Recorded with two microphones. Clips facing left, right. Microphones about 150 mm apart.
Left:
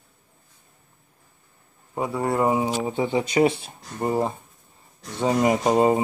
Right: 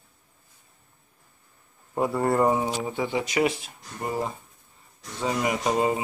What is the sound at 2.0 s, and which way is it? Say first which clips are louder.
Speech: right 1 dB; centre (ahead or behind).